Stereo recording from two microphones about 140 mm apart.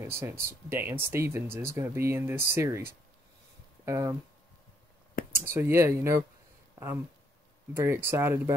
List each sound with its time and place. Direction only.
0.0 s speech: 15° right (ahead or behind)
3.8 s speech: 20° right (ahead or behind)
5.4 s speech: 15° right (ahead or behind)
7.7 s speech: 20° right (ahead or behind)